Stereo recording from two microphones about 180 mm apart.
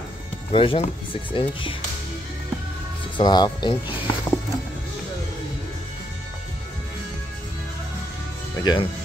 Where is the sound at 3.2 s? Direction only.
25° left (ahead or behind).